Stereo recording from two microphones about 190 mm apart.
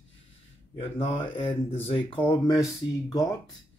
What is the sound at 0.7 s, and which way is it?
A man's voice, 30° left (ahead or behind).